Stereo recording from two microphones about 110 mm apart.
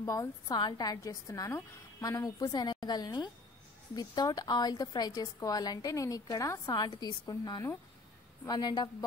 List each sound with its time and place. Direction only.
0.0 s a woman's voice: 30° left (ahead or behind)